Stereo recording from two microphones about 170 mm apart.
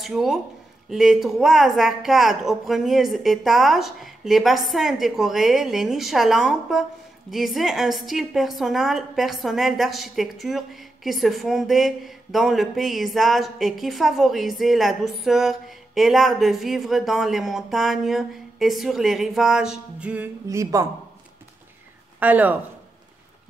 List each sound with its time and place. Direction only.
0.0 s a woman's voice: centre (ahead or behind)
20.4 s speech: 20° right (ahead or behind)
22.2 s speech: 10° right (ahead or behind)